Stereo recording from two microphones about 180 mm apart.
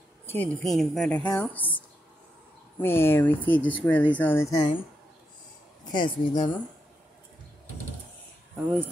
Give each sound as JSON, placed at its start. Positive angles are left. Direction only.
{"t": 0.3, "sound": "a woman's voice", "side_deg": 10}
{"t": 2.8, "sound": "a woman's voice", "side_deg": 10}
{"t": 5.9, "sound": "speech", "side_deg": 25}